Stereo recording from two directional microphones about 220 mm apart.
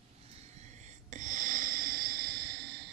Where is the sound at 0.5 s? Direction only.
30° right (ahead or behind); by 2.8 s 50° right (ahead or behind).